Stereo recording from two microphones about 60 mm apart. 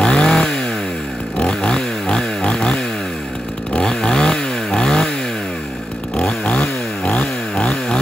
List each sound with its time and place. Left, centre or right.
0.0 s chainsaw: centre
1.4 s a sound: centre
3.7 s chainsaw: centre
6.4 s chainsaw: left